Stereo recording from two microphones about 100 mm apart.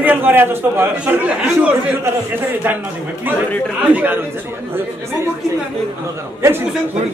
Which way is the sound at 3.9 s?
15° right (ahead or behind).